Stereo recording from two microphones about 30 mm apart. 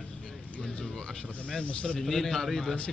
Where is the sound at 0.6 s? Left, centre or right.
Left.